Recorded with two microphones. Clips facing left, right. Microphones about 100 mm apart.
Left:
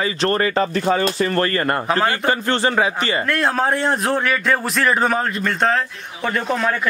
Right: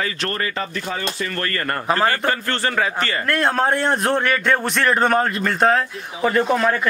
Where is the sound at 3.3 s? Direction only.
Centre (ahead or behind).